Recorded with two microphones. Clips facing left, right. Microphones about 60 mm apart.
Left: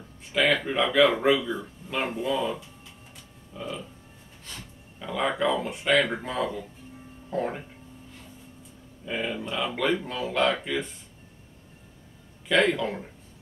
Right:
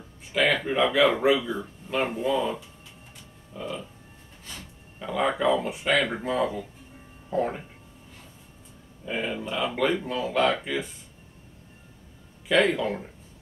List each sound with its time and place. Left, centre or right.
0.3 s speech: centre
9.0 s speech: centre
12.4 s speech: centre